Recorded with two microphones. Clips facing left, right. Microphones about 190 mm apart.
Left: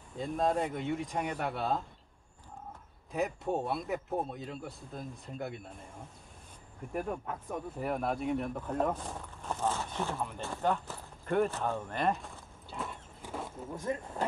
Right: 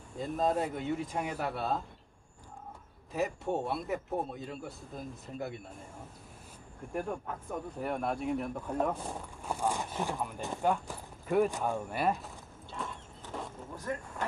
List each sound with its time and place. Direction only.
0.2 s speech: centre (ahead or behind)
3.1 s speech: centre (ahead or behind)
6.9 s speech: 5° left (ahead or behind)
12.7 s vehicle: 5° left (ahead or behind)
13.9 s speech: 20° left (ahead or behind)